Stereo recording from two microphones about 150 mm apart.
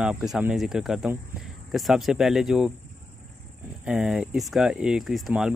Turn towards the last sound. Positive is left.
turn(degrees=0)  # may be behind; listen again after turning